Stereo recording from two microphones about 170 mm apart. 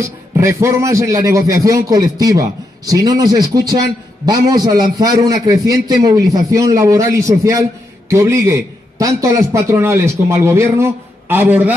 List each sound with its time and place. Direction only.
0.0 s a man's voice: 15° right (ahead or behind)